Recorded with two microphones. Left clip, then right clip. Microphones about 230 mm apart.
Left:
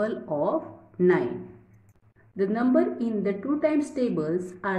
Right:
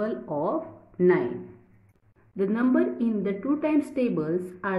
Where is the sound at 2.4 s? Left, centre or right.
Centre.